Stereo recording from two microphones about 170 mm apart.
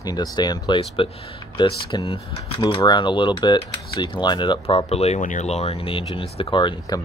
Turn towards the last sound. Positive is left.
turn(degrees=30)  # may be behind; listen again after turning